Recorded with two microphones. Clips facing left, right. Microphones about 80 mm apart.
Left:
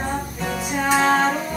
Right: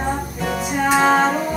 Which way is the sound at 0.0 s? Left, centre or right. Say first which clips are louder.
Right 3 dB; centre.